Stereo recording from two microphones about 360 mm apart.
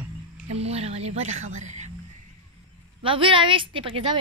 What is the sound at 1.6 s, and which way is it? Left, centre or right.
Whispering, centre.